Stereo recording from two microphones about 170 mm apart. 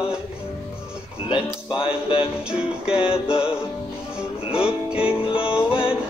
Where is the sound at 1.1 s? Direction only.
30° left (ahead or behind).